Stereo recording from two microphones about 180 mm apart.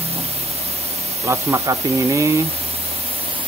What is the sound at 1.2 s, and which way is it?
Speech, 15° right (ahead or behind).